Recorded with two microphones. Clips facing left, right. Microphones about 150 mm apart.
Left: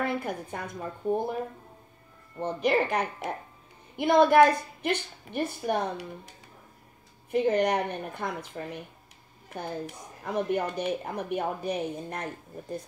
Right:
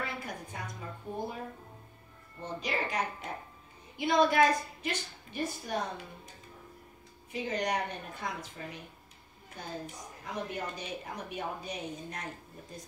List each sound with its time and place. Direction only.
0.0 s a woman's voice: 55° left (ahead or behind)
2.4 s a woman's voice: 60° left (ahead or behind)
10.2 s a woman's voice: 60° left (ahead or behind)